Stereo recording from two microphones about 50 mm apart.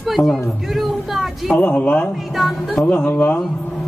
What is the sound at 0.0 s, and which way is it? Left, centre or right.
Speech, centre.